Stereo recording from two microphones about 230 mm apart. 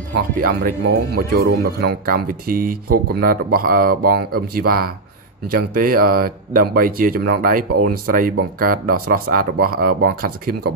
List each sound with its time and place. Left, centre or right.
0.4 s speech: right